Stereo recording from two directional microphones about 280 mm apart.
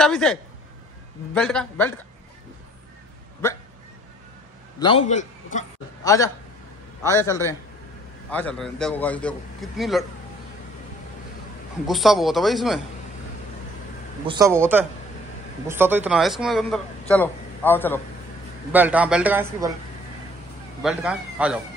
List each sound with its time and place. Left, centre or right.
0.0 s a man's voice: centre
4.7 s a man's voice: centre
6.0 s a man's voice: centre
11.9 s a man's voice: centre
14.2 s a man's voice: centre
15.7 s a man's voice: centre
18.7 s a man's voice: centre
20.8 s a man's voice: centre